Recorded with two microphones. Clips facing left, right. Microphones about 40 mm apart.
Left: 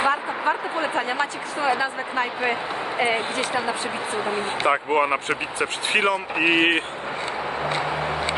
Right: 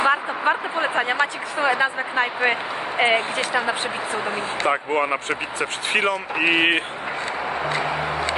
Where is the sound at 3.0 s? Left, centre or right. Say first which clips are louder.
Right 4 dB; right.